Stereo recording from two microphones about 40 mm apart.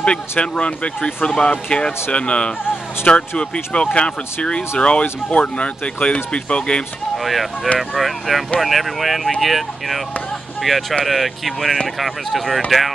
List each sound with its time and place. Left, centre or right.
0.0 s speech: left
7.2 s speech: centre